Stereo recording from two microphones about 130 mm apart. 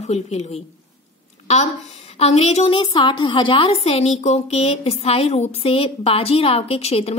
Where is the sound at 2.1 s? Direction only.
50° left (ahead or behind).